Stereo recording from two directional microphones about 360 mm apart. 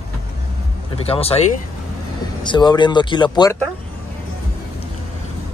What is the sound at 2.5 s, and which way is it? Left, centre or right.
Speech, centre.